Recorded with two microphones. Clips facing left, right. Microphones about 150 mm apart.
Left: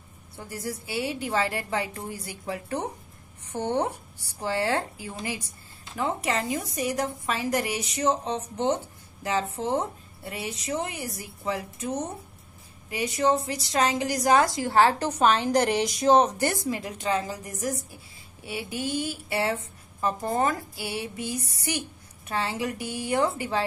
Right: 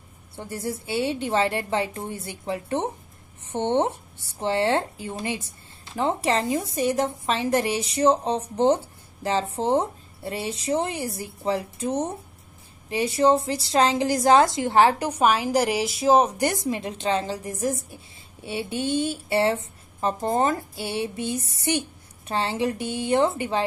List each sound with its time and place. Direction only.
0.4 s a woman's voice: 25° right (ahead or behind)